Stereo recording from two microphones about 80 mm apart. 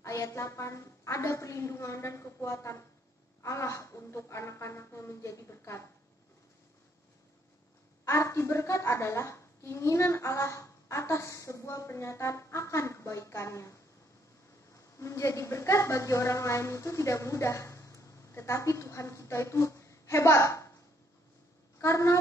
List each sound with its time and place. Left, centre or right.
0.0 s a woman's voice: left
8.0 s a woman's voice: left
15.0 s a woman's voice: left
21.7 s speech: left